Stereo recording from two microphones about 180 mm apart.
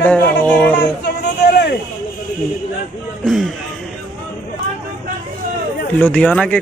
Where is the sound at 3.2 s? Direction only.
Centre (ahead or behind).